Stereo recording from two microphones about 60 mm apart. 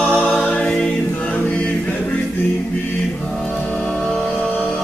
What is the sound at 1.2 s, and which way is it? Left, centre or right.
Choir, left.